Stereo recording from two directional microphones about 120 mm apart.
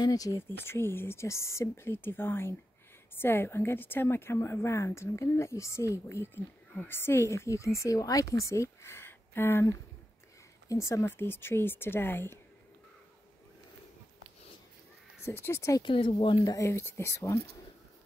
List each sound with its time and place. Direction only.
0.0 s speech: 30° left (ahead or behind)
0.4 s a woman's voice: 20° left (ahead or behind)
15.2 s a woman's voice: 20° left (ahead or behind)
15.8 s speech: 45° left (ahead or behind)
16.4 s a woman's voice: 25° left (ahead or behind)